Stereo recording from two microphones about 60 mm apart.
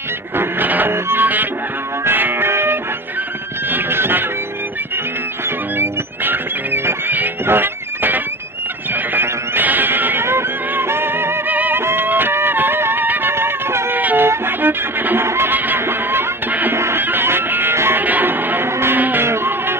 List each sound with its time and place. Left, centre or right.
0.4 s music: right
5.8 s music: right
13.9 s music: right
18.0 s a sound: right